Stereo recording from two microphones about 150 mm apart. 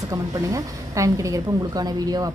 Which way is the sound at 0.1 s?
20° right (ahead or behind).